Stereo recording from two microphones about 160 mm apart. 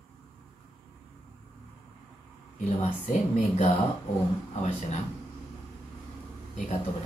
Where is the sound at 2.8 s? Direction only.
45° left (ahead or behind).